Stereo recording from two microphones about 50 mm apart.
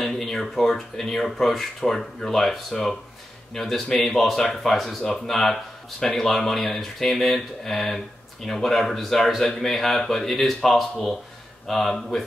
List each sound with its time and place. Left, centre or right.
0.0 s speech: centre